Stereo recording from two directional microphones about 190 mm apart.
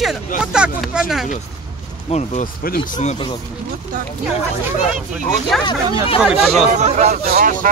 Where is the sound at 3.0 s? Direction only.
35° left (ahead or behind).